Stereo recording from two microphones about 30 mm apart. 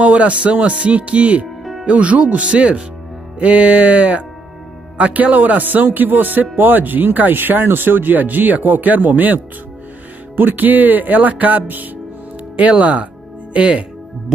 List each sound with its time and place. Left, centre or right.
0.0 s music: right
1.6 s music: centre
1.9 s music: right
2.4 s speech: right
3.3 s music: right
4.9 s speech: right
12.5 s speech: right